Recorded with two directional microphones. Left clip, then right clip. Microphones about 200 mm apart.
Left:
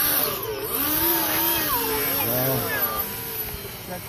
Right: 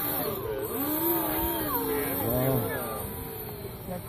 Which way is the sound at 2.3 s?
5° left (ahead or behind).